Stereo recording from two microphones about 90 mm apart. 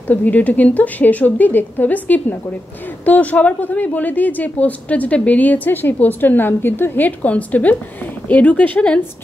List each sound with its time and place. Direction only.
0.1 s a woman's voice: 20° left (ahead or behind)